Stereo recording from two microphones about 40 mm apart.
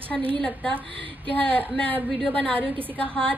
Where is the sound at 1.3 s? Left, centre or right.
Left.